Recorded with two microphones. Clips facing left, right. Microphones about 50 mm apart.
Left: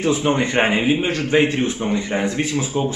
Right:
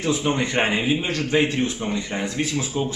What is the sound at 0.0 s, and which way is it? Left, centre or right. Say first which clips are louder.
A man's voice: left 4 dB; centre.